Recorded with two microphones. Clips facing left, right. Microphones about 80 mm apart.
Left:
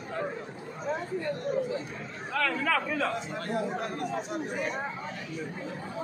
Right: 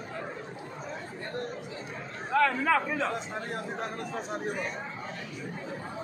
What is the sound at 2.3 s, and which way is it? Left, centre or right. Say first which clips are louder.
Speech: right 4 dB; right.